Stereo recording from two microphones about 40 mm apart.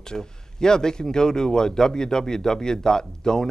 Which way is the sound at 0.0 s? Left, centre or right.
Centre.